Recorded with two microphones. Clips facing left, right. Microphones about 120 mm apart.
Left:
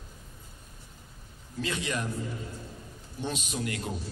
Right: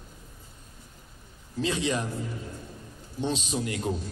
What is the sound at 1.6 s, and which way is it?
Speech, 25° right (ahead or behind).